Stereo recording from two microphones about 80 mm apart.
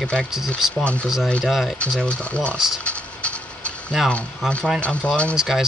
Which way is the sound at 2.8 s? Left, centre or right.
Centre.